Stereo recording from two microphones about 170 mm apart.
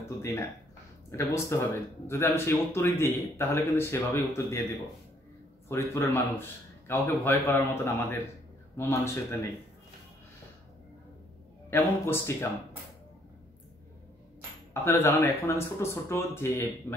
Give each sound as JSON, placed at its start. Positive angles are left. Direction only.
{"t": 0.2, "sound": "a sound", "side_deg": 15}
{"t": 1.5, "sound": "speech", "side_deg": 15}
{"t": 5.7, "sound": "speech", "side_deg": 15}
{"t": 11.7, "sound": "speech", "side_deg": 15}
{"t": 14.7, "sound": "speech", "side_deg": 15}